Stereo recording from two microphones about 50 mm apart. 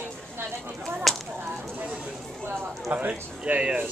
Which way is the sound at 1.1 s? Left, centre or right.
Centre.